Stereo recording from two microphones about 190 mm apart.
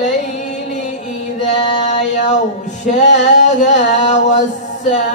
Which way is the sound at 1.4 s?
40° left (ahead or behind).